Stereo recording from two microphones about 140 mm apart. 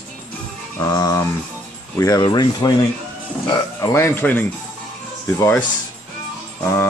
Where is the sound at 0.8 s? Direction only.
25° left (ahead or behind).